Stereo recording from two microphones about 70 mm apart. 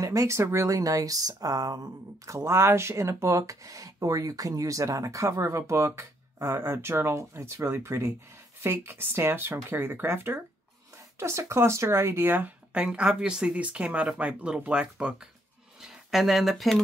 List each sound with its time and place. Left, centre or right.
0.0 s speech: right
2.3 s speech: right
11.1 s speech: right
12.8 s speech: centre